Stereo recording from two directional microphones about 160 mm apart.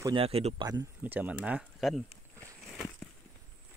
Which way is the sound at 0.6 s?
25° right (ahead or behind).